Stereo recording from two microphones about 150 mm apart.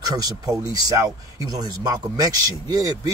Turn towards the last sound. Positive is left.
turn(degrees=-25)  # may be behind; listen again after turning